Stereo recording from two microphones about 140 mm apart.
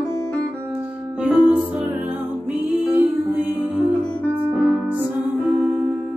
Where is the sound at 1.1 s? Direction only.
10° right (ahead or behind).